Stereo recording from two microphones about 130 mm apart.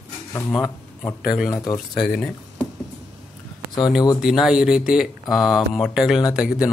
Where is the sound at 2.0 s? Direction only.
Centre (ahead or behind).